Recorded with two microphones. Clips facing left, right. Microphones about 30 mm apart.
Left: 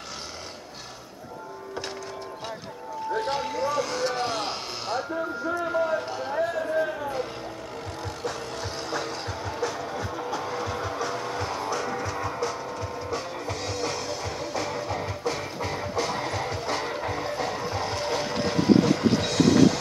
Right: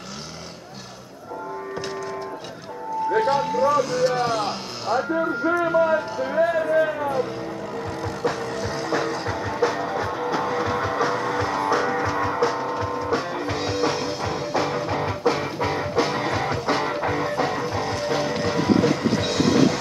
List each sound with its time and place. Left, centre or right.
3.2 s speech: centre
5.1 s speech: right
9.3 s music: right
9.6 s music: right
10.6 s vehicle: right
11.4 s music: centre
11.7 s music: right; by 17.3 s centre
17.6 s vehicle: centre
18.1 s music: centre
19.2 s music: centre